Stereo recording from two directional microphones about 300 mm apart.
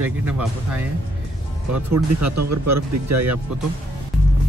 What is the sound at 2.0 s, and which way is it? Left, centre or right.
Speech, right.